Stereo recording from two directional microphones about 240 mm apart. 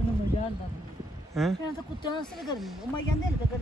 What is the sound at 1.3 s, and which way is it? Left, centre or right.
Speech, centre.